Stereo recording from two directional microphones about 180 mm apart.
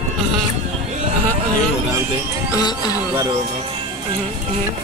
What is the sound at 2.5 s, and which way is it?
Music, 20° left (ahead or behind).